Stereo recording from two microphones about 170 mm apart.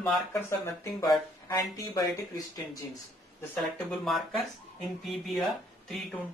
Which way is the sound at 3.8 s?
Centre (ahead or behind).